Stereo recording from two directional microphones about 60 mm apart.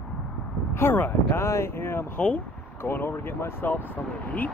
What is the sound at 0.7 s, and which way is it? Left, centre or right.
Speech, left.